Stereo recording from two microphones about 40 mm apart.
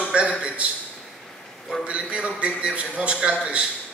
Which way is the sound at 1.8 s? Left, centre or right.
Right.